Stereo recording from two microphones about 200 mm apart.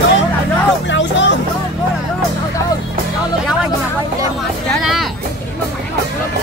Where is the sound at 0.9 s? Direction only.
65° left (ahead or behind).